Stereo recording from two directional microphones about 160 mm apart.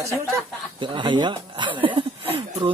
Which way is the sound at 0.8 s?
30° right (ahead or behind).